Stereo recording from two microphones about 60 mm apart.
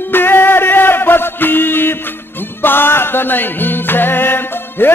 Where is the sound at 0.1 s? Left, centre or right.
Left.